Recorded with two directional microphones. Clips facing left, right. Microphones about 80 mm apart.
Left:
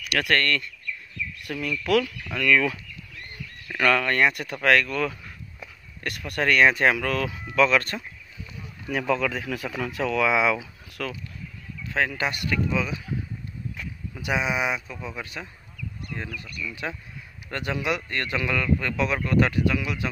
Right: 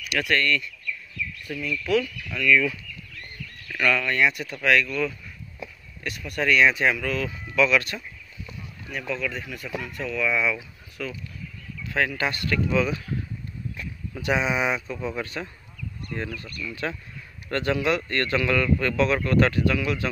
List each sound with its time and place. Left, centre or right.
0.1 s speech: left
3.3 s bird: centre
3.8 s speech: left
9.0 s speech: left
11.0 s speech: left
11.9 s speech: left
12.6 s speech: centre
14.2 s a man's voice: centre